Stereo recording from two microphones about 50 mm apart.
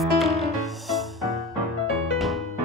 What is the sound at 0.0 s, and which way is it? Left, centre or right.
Music, centre.